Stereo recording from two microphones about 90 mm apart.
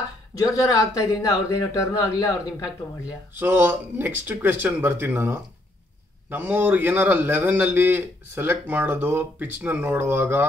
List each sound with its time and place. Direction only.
0.3 s speech: 40° left (ahead or behind)
3.3 s a man's voice: 25° right (ahead or behind)